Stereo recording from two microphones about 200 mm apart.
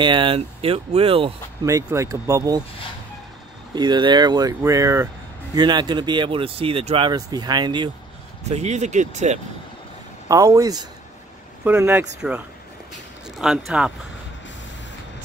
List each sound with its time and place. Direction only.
0.0 s speech: 25° right (ahead or behind)
1.7 s speech: 15° right (ahead or behind)
3.7 s speech: 20° right (ahead or behind)
8.5 s speech: 35° right (ahead or behind)
10.2 s speech: 15° right (ahead or behind)
13.4 s speech: centre (ahead or behind)